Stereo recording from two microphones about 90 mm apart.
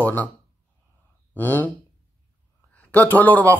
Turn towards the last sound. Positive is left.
turn(degrees=20)  # may be behind; listen again after turning